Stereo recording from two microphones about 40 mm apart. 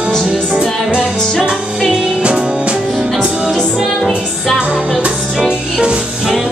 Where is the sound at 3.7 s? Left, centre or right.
Centre.